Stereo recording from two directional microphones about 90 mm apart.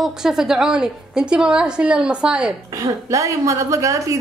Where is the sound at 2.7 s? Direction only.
40° right (ahead or behind).